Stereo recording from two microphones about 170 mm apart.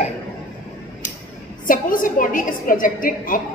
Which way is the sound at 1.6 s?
55° left (ahead or behind).